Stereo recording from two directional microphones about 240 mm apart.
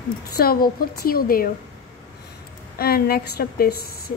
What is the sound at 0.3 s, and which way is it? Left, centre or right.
A woman's voice, left.